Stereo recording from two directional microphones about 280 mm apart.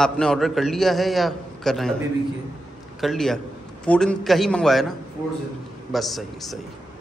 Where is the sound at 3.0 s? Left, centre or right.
Centre.